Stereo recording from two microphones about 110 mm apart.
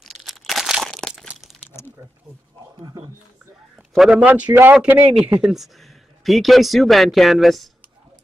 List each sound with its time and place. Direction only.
0.0 s crumpling: centre (ahead or behind)
1.7 s a sound: 20° left (ahead or behind)
3.9 s a man's voice: centre (ahead or behind)
4.2 s a man's voice: 10° right (ahead or behind)
5.4 s speech: 5° right (ahead or behind)